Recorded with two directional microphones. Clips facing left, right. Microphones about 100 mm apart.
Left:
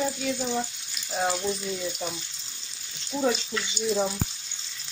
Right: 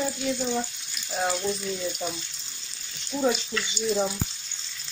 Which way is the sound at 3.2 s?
5° left (ahead or behind).